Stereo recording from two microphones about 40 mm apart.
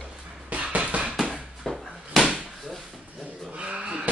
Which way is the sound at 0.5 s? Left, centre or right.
Right.